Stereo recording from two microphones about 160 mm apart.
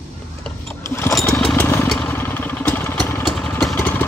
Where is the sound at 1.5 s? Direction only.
15° left (ahead or behind).